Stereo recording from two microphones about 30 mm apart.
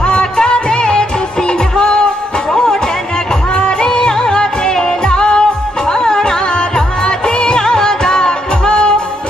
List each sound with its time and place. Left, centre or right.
0.0 s music: left
3.5 s music: left
3.9 s music: left